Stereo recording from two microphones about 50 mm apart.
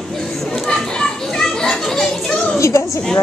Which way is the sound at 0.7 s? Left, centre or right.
Centre.